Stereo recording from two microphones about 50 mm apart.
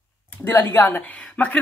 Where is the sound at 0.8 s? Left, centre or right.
Left.